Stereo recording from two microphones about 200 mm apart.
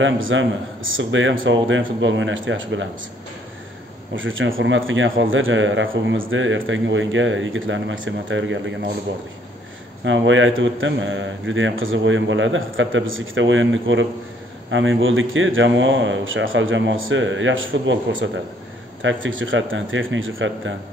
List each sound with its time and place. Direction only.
0.0 s speech: 70° right (ahead or behind)
4.1 s speech: 75° right (ahead or behind)
10.0 s speech: 70° right (ahead or behind)